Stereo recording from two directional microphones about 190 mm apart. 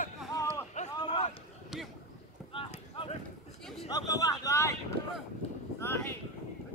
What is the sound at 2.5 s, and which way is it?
Livestock, 30° left (ahead or behind).